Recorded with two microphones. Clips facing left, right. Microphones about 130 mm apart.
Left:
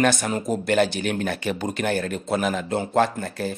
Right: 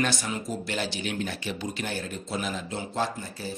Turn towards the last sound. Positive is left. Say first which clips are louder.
# left 7 dB
turn(degrees=60)  # may be behind; listen again after turning